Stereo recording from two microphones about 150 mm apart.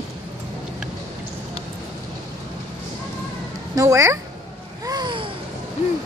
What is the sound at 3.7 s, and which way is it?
Speech, 20° right (ahead or behind).